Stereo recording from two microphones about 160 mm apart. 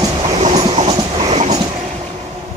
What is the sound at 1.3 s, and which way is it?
Train, 45° right (ahead or behind).